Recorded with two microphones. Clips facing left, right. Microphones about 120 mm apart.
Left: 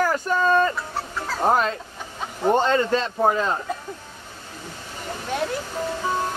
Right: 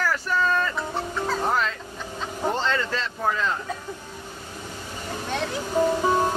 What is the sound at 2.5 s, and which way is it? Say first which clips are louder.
Speech: left 8 dB; 50° left (ahead or behind).